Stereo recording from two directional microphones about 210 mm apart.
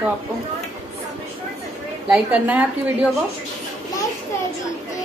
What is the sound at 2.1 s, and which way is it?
Speech, 5° right (ahead or behind).